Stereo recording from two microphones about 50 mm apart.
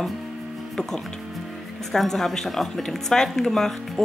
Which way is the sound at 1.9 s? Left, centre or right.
Centre.